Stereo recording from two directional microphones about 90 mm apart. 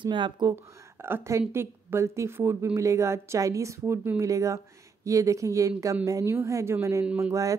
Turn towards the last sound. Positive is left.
turn(degrees=-35)  # may be behind; listen again after turning